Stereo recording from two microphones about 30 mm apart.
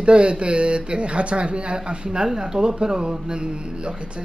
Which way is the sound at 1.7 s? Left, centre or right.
Right.